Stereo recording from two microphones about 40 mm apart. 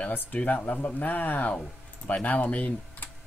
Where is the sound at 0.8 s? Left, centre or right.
Left.